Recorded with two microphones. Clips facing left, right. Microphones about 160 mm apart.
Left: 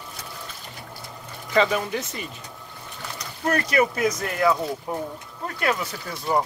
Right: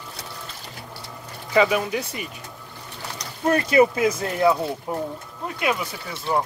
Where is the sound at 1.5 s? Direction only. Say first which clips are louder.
Right 2 dB; 10° right (ahead or behind).